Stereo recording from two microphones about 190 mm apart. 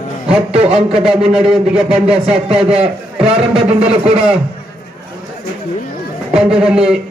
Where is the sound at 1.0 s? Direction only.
Centre (ahead or behind).